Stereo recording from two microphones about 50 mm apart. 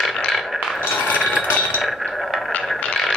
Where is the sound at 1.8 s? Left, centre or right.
Centre.